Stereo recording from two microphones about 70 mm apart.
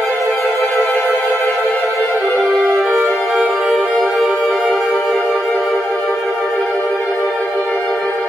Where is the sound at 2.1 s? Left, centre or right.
Centre.